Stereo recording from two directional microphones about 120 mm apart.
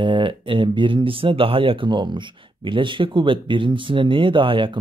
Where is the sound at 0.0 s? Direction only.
45° right (ahead or behind).